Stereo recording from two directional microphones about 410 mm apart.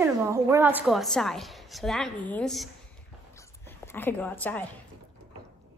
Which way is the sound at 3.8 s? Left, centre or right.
Centre.